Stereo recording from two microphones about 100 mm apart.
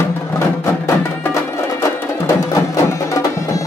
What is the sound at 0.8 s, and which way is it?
Music, 30° left (ahead or behind).